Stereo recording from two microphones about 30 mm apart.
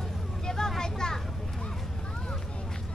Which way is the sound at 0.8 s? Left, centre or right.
Left.